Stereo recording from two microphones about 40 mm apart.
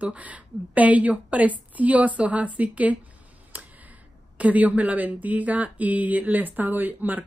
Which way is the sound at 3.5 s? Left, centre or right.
Right.